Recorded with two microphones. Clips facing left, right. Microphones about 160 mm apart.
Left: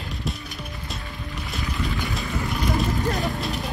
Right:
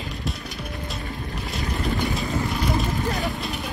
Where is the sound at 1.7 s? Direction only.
40° right (ahead or behind).